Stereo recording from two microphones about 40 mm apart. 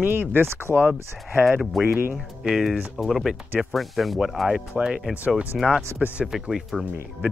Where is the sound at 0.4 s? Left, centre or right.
Right.